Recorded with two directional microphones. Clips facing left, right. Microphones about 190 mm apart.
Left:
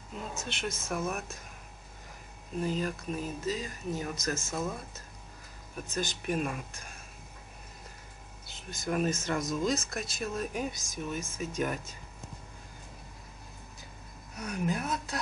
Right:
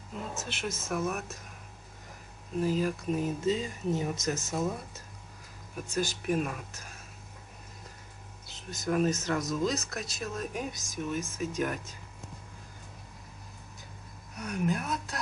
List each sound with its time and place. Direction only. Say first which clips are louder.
0.4 s speech: even; 5° right (ahead or behind)
2.6 s speech: right 3 dB; 5° right (ahead or behind)
3.1 s speech: right 5 dB; 20° right (ahead or behind); by 7.0 s 5° right (ahead or behind)
8.8 s speech: right 2 dB; centre (ahead or behind)
14.3 s speech: right 1 dB; centre (ahead or behind)